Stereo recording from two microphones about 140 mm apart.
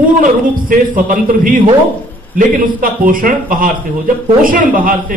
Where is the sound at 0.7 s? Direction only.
75° right (ahead or behind).